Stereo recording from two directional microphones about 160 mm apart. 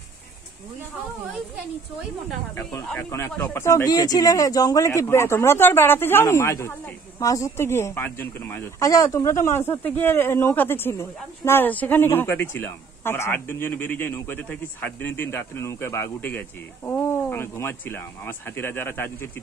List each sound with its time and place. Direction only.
2.5 s speech: 10° left (ahead or behind)